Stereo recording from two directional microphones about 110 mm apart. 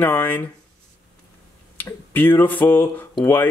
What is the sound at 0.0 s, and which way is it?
Speech, 15° left (ahead or behind).